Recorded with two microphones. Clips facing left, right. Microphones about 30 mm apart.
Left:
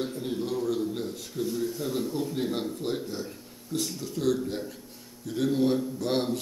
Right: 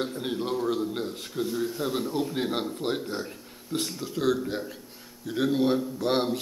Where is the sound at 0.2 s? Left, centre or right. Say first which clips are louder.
Right 1 dB; right.